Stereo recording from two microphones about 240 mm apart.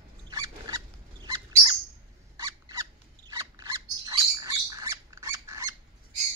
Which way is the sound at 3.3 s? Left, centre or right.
Centre.